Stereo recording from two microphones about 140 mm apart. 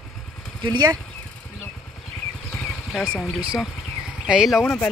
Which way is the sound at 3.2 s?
5° right (ahead or behind).